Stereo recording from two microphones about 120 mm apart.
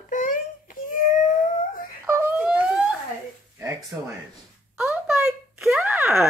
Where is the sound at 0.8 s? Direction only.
90° left.